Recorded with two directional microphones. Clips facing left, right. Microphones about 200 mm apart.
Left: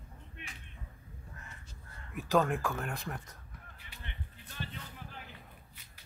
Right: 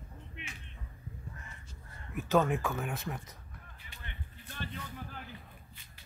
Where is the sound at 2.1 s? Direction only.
Centre (ahead or behind).